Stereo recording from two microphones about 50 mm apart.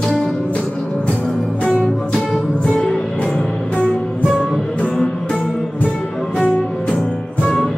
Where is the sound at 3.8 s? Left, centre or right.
Right.